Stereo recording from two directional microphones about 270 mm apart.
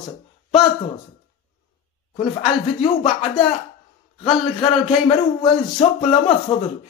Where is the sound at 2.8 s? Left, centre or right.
Left.